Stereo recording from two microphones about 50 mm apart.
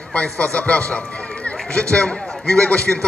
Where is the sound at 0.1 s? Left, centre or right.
Left.